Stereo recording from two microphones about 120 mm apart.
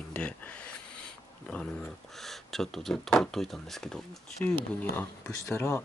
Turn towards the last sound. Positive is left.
turn(degrees=20)  # may be behind; listen again after turning